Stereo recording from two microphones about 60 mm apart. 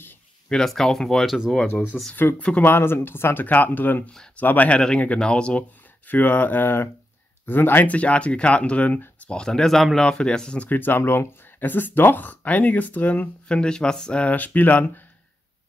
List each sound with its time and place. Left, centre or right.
0.5 s speech: centre
1.9 s speech: left
2.6 s speech: left
4.7 s speech: centre
9.3 s speech: centre
10.7 s speech: left
13.5 s speech: centre
14.2 s speech: left